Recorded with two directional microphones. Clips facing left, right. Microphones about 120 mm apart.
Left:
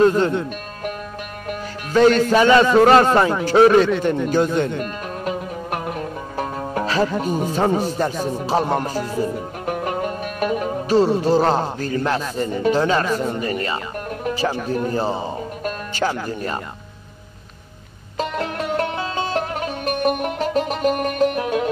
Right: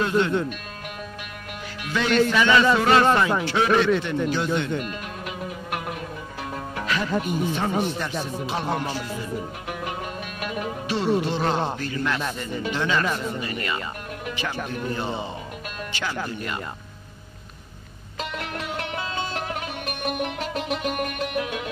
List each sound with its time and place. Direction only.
1.5 s speech: 40° left (ahead or behind)
5.2 s music: 40° left (ahead or behind)
14.2 s speech: 35° left (ahead or behind)
18.1 s music: 40° left (ahead or behind)